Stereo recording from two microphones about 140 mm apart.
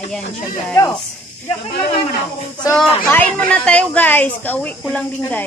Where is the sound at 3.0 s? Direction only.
10° left (ahead or behind).